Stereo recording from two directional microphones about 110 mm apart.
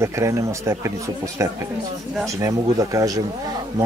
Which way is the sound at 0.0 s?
25° right (ahead or behind).